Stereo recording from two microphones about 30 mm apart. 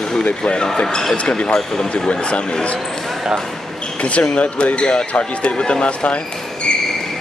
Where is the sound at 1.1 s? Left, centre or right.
Left.